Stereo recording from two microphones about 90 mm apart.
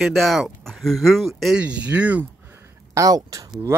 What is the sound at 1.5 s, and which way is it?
Speech, 15° right (ahead or behind).